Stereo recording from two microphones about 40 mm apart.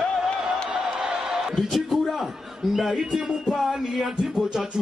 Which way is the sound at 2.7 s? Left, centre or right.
Centre.